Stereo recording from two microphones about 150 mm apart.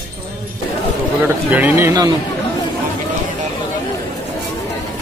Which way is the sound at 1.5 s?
10° right (ahead or behind).